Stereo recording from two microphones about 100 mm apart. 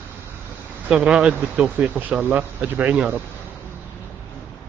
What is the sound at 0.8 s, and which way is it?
Speech, 10° right (ahead or behind).